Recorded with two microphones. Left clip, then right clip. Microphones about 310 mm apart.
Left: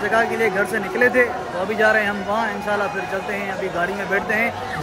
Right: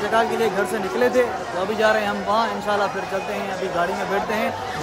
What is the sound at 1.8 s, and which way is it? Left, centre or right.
Speech, centre.